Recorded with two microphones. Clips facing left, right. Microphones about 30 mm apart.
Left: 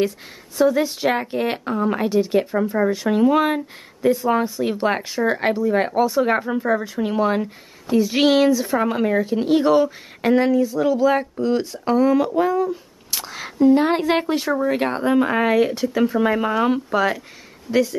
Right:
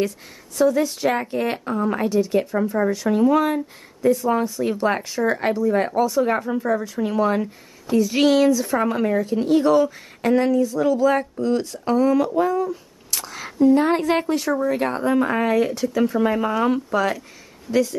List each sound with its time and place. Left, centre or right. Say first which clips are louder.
0.6 s speech: left 1 dB; centre
12.4 s a sound: left 1 dB; centre
13.7 s speech: left 1 dB; left